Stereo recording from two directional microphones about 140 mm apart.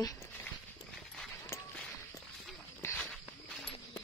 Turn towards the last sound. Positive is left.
turn(degrees=15)  # may be behind; listen again after turning